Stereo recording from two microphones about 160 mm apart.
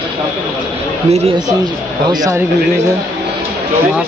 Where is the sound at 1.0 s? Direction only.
40° right (ahead or behind).